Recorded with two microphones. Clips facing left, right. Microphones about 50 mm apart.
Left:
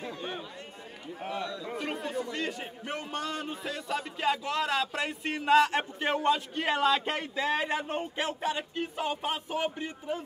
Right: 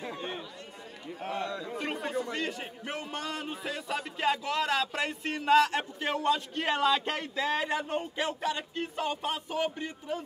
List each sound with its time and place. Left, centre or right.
0.1 s chatter: centre
1.8 s chatter: centre
2.0 s chatter: right
2.3 s a man's voice: centre; by 6.4 s left
6.5 s a sound: centre